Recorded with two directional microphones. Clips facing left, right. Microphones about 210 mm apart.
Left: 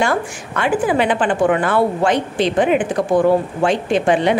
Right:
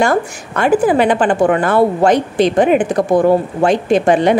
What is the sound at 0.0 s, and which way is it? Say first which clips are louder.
A woman's voice: right 4 dB; 45° right (ahead or behind).